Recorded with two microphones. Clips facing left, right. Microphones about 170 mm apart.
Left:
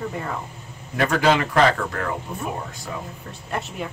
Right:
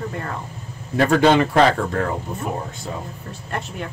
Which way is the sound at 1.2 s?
30° right (ahead or behind).